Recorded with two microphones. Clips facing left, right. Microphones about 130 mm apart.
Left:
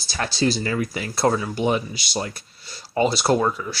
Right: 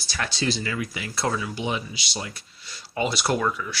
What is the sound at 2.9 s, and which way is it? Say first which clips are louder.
Speech: left 5 dB; 35° left (ahead or behind).